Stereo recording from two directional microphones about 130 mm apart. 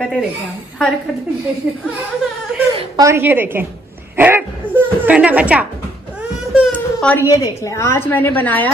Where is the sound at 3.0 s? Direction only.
20° right (ahead or behind).